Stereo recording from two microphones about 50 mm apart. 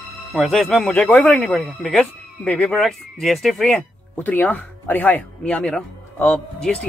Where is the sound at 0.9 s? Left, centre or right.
Left.